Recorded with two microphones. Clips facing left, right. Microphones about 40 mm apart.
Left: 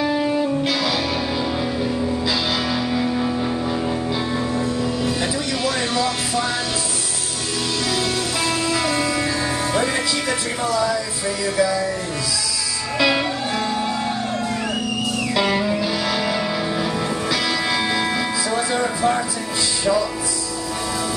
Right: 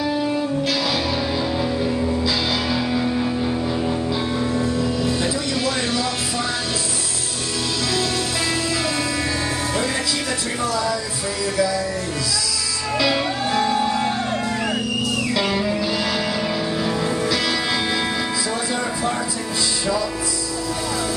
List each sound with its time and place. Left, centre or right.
2.7 s music: centre
13.0 s music: centre
15.3 s music: left
15.6 s music: centre
17.6 s music: centre